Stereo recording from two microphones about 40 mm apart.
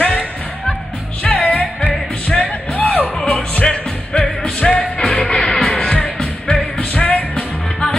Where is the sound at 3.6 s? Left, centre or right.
Left.